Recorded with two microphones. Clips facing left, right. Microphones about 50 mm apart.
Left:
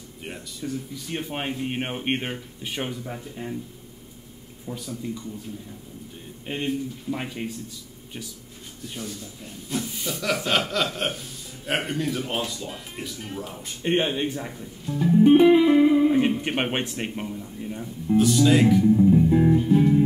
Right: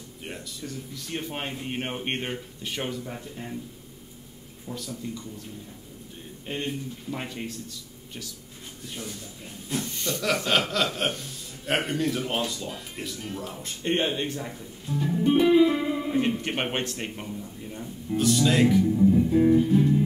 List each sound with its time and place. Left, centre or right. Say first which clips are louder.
0.2 s speech: left 3 dB; centre
4.6 s speech: left 3 dB; centre
6.4 s speech: left 4 dB; centre
9.8 s speech: left 1 dB; centre
14.9 s speech: left 5 dB; centre
15.2 s speech: left 3 dB; left
19.1 s music: left 3 dB; centre
19.4 s speech: right 1 dB; centre
19.7 s music: left 3 dB; left